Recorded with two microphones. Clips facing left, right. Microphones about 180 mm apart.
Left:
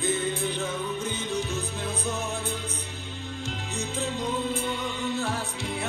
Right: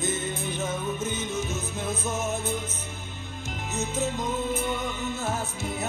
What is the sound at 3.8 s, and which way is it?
Music, 45° right (ahead or behind).